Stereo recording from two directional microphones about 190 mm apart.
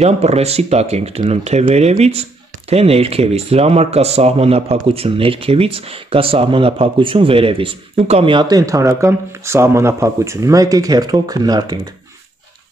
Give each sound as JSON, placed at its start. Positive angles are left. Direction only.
{"t": 0.0, "sound": "speech", "side_deg": -35}